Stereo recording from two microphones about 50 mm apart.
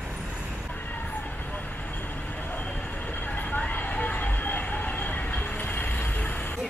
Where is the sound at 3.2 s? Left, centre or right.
Left.